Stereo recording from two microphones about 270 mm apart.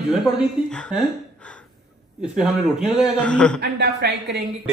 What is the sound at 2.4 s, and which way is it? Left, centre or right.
Speech, centre.